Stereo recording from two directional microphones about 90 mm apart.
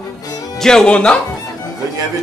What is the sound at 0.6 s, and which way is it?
Speech, 5° left (ahead or behind).